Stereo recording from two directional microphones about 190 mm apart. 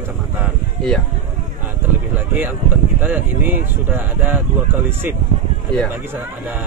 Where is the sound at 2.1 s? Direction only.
10° right (ahead or behind).